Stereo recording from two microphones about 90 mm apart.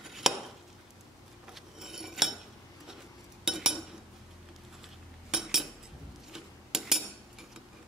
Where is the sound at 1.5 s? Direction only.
5° right (ahead or behind).